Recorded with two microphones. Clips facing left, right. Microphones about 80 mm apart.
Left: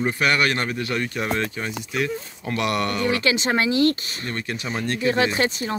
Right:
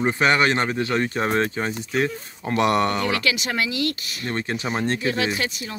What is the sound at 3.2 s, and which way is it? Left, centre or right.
Speech, left.